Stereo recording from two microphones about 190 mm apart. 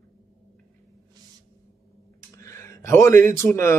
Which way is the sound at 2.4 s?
15° left (ahead or behind).